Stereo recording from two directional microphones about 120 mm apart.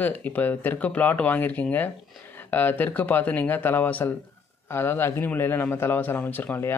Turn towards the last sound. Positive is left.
turn(degrees=15)  # may be behind; listen again after turning